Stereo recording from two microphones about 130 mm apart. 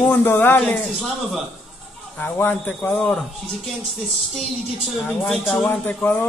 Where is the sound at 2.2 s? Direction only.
15° left (ahead or behind).